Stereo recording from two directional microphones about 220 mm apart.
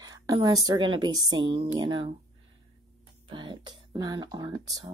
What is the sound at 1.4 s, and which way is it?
Speech, 55° right (ahead or behind).